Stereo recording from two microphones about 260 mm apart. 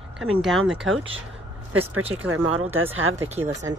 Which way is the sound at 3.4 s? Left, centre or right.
Centre.